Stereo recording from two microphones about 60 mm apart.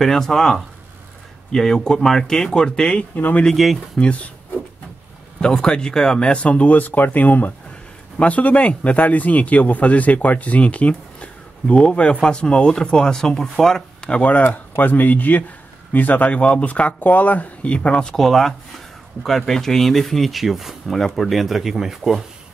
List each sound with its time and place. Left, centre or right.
0.0 s speech: centre
3.2 s speech: left
3.5 s speech: centre
4.0 s speech: left
5.4 s speech: centre
14.1 s speech: left
18.2 s speech: centre